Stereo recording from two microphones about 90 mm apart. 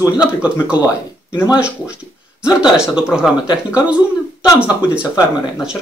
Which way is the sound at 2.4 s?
10° right (ahead or behind).